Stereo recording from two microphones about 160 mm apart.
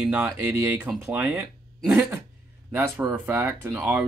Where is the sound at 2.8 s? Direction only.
15° right (ahead or behind).